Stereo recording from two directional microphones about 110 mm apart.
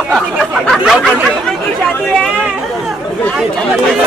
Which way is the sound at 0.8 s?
5° right (ahead or behind).